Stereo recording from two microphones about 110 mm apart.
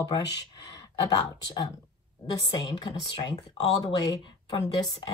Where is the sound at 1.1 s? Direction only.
50° left (ahead or behind).